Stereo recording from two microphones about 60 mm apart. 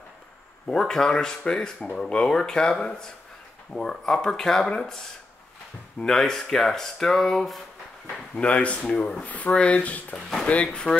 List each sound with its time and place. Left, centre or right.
0.7 s speech: centre
6.1 s speech: centre
8.1 s speech: centre